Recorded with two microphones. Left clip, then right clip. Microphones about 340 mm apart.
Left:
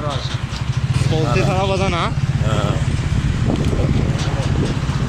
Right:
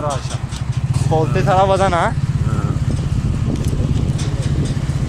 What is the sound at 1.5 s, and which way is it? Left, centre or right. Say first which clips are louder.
Speech: right 6 dB; right.